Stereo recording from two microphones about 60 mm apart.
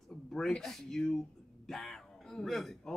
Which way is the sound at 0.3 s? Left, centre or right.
Centre.